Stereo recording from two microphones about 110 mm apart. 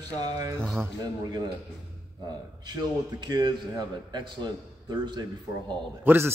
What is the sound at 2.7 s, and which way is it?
A man's voice, 35° right (ahead or behind).